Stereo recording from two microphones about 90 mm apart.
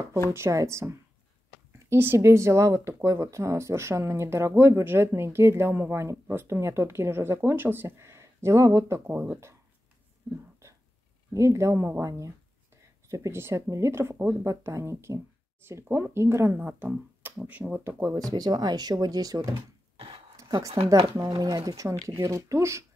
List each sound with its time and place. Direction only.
0.3 s speech: 30° right (ahead or behind)
10.6 s a sound: 30° right (ahead or behind)
11.3 s speech: 35° right (ahead or behind)
14.5 s speech: 35° right (ahead or behind)
18.1 s speech: 45° right (ahead or behind)
20.4 s speech: 50° right (ahead or behind)